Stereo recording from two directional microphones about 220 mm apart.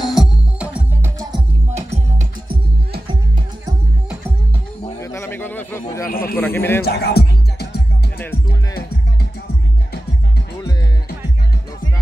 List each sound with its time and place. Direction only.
0.0 s music: centre (ahead or behind)
1.7 s music: 30° right (ahead or behind)
5.0 s a sound: 10° left (ahead or behind)
6.0 s a sound: 40° left (ahead or behind)
6.3 s a man's voice: 10° left (ahead or behind)
6.8 s music: 45° left (ahead or behind)